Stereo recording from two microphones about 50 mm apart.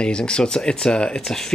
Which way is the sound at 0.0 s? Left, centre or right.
Centre.